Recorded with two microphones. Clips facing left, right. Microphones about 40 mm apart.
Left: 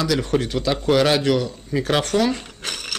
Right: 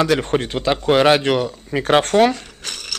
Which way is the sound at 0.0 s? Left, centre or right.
Right.